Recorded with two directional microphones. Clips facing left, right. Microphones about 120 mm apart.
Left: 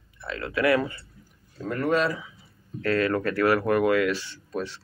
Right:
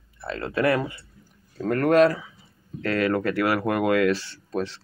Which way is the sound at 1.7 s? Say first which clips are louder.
Right 6 dB; 55° right (ahead or behind).